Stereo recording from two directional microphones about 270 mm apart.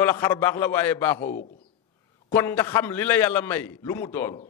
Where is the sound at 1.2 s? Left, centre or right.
Left.